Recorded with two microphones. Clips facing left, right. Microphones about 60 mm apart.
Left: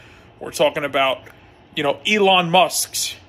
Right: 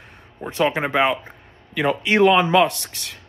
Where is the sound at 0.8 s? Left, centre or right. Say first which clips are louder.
Even; centre.